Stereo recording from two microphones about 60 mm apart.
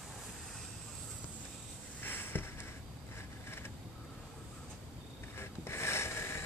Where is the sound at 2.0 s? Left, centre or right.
Left.